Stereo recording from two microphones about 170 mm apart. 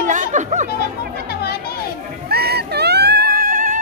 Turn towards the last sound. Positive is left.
turn(degrees=-55)  # may be behind; listen again after turning